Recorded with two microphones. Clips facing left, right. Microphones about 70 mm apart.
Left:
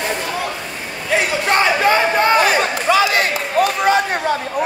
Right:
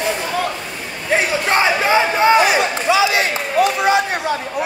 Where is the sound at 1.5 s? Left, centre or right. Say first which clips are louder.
Left 1 dB; centre.